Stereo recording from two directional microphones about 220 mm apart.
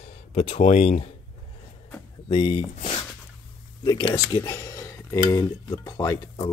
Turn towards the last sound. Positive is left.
turn(degrees=15)  # may be behind; listen again after turning